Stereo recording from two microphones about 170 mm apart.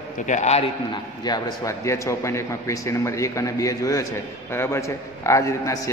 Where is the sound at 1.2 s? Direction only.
20° left (ahead or behind).